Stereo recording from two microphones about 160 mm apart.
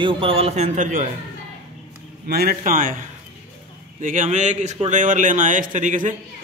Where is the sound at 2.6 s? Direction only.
55° right (ahead or behind).